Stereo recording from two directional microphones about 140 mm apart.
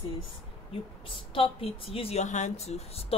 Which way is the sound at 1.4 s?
40° left (ahead or behind).